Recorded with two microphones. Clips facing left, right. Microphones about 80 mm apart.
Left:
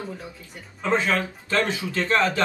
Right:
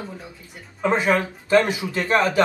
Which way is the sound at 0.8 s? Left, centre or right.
Centre.